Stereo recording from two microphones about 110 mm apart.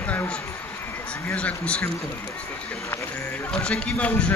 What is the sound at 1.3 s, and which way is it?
Speech, 10° left (ahead or behind).